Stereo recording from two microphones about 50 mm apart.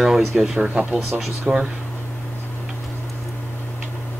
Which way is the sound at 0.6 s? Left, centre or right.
Right.